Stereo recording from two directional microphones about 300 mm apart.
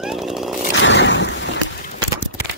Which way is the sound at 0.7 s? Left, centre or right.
Left.